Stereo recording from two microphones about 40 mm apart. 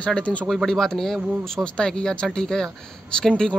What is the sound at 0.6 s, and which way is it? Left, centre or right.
Speech, centre.